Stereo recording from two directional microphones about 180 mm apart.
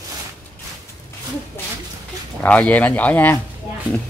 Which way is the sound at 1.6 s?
15° left (ahead or behind).